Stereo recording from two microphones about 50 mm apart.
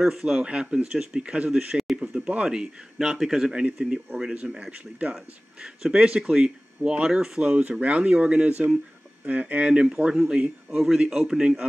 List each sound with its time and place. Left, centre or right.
0.0 s speech: centre
0.4 s speech: right
1.7 s a sound: centre
2.2 s speech: right
3.5 s speech: centre
5.1 s speech: centre